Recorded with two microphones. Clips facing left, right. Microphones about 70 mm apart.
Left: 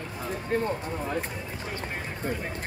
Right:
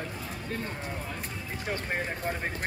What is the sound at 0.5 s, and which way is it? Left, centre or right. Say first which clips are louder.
Speech: left 9 dB; left.